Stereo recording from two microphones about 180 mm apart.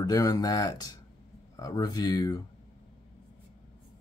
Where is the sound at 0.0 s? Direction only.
20° left (ahead or behind).